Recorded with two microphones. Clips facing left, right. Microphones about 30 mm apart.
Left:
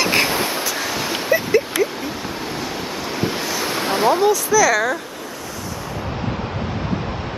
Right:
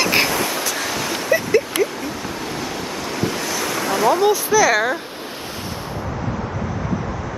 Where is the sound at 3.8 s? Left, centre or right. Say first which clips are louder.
Even; left.